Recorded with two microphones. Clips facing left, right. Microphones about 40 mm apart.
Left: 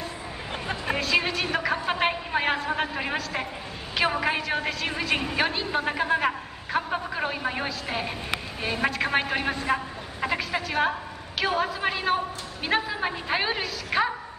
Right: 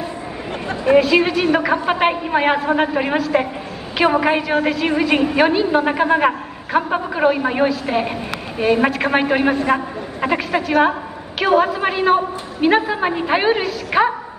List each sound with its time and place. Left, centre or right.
0.8 s a woman's voice: centre